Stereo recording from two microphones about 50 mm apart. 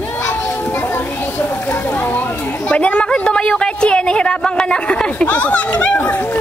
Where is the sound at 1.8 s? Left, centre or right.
Left.